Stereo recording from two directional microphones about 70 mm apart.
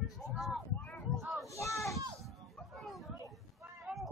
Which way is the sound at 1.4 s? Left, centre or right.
Left.